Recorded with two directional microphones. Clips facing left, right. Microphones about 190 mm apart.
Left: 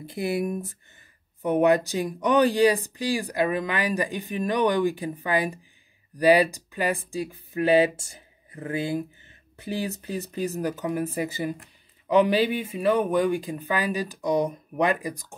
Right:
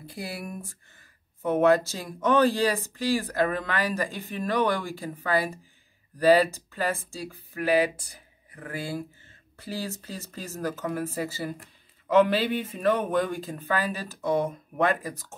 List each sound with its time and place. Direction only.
0.0 s speech: 20° left (ahead or behind)